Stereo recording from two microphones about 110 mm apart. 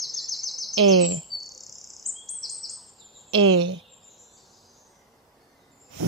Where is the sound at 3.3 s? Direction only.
50° right (ahead or behind).